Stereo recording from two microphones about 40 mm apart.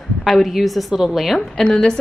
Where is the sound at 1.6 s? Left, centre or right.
Centre.